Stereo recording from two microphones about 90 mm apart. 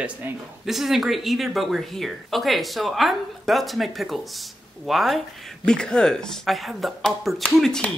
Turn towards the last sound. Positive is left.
turn(degrees=5)  # may be behind; listen again after turning